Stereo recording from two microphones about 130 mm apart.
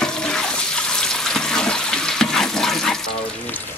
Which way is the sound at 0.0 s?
5° left (ahead or behind).